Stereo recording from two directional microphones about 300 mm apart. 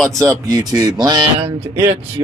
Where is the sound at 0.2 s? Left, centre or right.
Centre.